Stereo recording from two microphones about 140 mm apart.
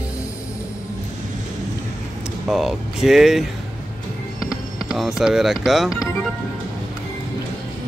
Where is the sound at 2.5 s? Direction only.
Centre (ahead or behind).